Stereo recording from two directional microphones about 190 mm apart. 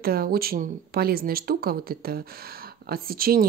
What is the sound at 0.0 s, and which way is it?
Speech, 50° right (ahead or behind).